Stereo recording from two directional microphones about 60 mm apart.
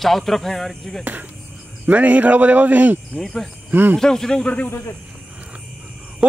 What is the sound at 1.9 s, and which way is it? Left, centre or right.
Speech, right.